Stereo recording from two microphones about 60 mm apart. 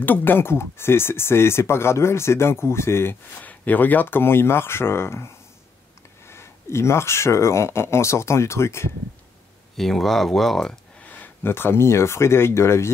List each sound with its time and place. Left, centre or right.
0.0 s speech: left
3.4 s speech: left
9.8 s speech: centre
11.4 s speech: left